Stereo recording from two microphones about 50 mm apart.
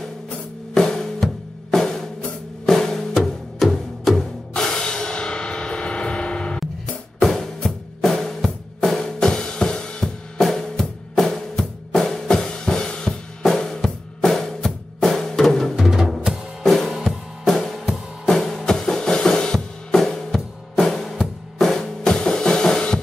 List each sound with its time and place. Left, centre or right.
0.7 s music: centre
3.2 s music: centre
7.2 s drum: centre
10.0 s music: centre
15.7 s music: centre
18.3 s drum: centre